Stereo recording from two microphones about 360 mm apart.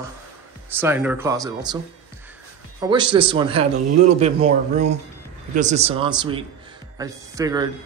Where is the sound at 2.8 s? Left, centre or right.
Centre.